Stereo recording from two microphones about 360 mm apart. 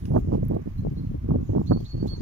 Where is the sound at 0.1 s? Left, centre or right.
Right.